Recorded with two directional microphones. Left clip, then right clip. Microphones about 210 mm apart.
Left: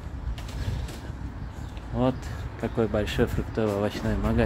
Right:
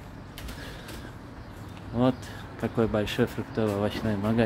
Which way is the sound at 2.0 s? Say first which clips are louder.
Even; 10° right (ahead or behind).